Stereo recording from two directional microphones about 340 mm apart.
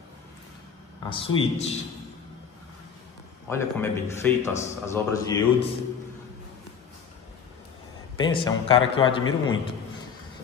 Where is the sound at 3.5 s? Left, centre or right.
Centre.